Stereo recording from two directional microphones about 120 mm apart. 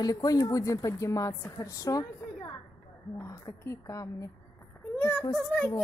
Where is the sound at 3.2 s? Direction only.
25° left (ahead or behind).